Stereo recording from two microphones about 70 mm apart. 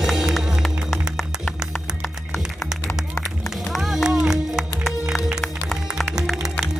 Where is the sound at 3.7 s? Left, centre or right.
Centre.